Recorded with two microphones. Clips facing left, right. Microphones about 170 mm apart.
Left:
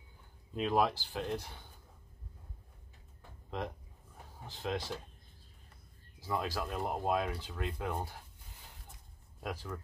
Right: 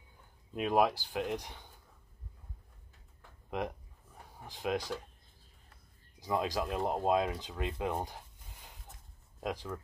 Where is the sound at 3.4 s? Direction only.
15° right (ahead or behind).